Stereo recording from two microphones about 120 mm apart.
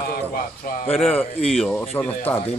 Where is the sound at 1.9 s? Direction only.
15° left (ahead or behind).